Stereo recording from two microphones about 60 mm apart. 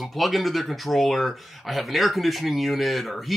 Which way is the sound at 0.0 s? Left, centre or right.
Centre.